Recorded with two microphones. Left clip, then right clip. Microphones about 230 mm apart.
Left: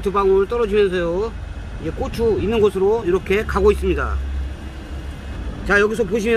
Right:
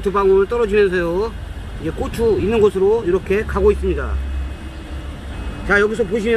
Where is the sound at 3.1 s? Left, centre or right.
Centre; by 4.1 s left.